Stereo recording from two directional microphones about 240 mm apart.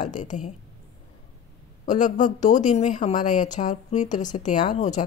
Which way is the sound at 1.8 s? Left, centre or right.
Left.